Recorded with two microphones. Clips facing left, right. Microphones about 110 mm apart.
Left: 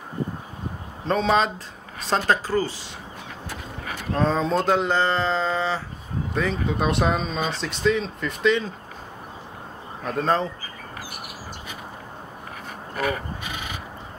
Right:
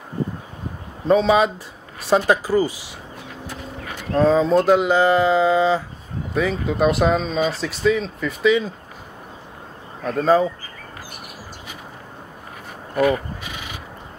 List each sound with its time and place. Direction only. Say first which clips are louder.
1.0 s speech: right 5 dB; 5° right (ahead or behind)
4.1 s speech: right 6 dB; centre (ahead or behind)
6.3 s speech: right 4 dB; 5° right (ahead or behind)
10.0 s speech: right 6 dB; 5° right (ahead or behind)